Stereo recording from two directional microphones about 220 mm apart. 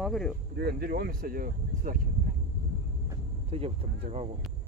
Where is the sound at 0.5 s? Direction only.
45° right (ahead or behind).